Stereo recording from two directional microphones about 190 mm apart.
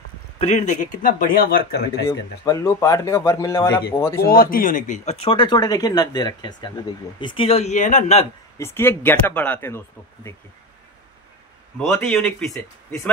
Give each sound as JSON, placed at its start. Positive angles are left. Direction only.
{"t": 0.4, "sound": "speech", "side_deg": 40}
{"t": 1.9, "sound": "a man's voice", "side_deg": 20}
{"t": 4.3, "sound": "speech", "side_deg": 50}
{"t": 8.5, "sound": "a man's voice", "side_deg": 15}
{"t": 11.9, "sound": "a man's voice", "side_deg": 5}